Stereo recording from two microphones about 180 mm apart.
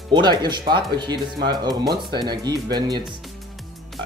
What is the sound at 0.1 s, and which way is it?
Speech, 25° right (ahead or behind).